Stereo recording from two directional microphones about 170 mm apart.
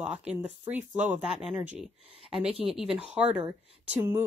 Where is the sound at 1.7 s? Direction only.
35° right (ahead or behind).